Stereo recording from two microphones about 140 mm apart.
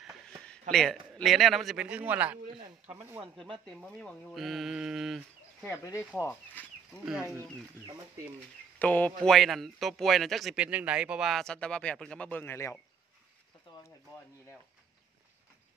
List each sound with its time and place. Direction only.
0.0 s a man's voice: 5° left (ahead or behind); by 3.3 s 10° right (ahead or behind)
3.6 s a man's voice: 5° left (ahead or behind)
5.6 s speech: 20° left (ahead or behind)
8.7 s a man's voice: 10° left (ahead or behind)
13.8 s a sound: 20° left (ahead or behind)